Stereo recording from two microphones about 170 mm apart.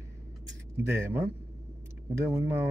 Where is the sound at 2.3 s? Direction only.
15° right (ahead or behind).